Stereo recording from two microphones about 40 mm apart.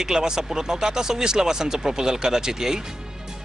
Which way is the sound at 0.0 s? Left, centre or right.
Centre.